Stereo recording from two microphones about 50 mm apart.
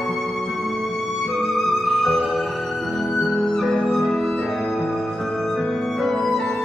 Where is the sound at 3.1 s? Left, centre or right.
Centre.